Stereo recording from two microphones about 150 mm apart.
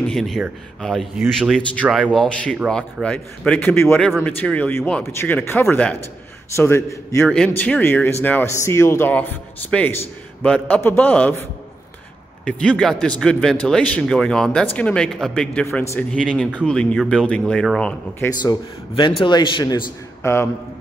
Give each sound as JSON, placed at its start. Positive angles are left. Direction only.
{"t": 0.1, "sound": "a man's voice", "side_deg": 0}
{"t": 7.2, "sound": "speech", "side_deg": 5}
{"t": 12.4, "sound": "speech", "side_deg": 5}
{"t": 18.4, "sound": "a man's voice", "side_deg": 30}